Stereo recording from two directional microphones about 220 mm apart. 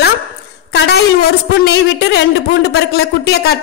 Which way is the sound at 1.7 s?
50° left (ahead or behind).